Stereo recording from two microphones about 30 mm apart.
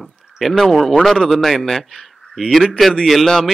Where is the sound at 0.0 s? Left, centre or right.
Centre.